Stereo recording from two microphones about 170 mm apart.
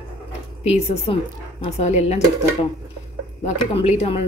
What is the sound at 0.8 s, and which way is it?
Speech, 35° left (ahead or behind).